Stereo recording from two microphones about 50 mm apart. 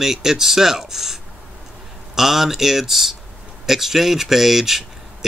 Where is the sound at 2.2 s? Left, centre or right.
Centre.